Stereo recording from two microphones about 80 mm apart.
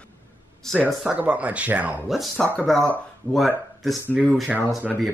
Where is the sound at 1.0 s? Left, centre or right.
Centre.